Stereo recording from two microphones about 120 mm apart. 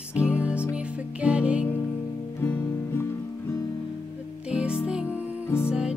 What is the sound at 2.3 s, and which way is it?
Music, 20° left (ahead or behind).